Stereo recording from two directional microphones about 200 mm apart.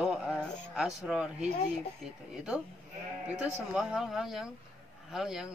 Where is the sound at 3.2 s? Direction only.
5° right (ahead or behind).